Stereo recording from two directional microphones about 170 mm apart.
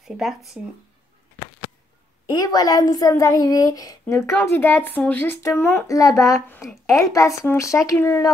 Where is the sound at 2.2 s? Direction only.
20° left (ahead or behind).